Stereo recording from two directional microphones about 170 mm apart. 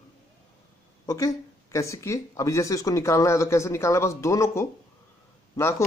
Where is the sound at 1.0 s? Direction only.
20° left (ahead or behind).